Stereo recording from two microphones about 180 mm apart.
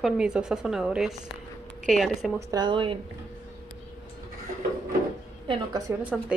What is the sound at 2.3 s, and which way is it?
Speech, 20° right (ahead or behind).